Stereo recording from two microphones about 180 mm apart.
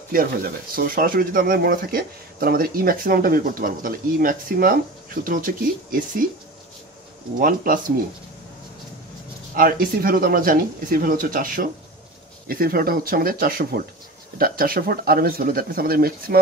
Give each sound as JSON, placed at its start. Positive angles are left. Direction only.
{"t": 0.7, "sound": "speech", "side_deg": -50}
{"t": 7.3, "sound": "speech", "side_deg": -50}
{"t": 9.6, "sound": "speech", "side_deg": -50}